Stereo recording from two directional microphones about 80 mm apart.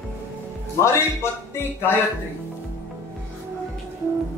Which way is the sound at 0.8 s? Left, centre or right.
Left.